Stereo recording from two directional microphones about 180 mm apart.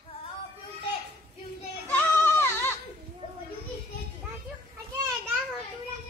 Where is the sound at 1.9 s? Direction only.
10° left (ahead or behind).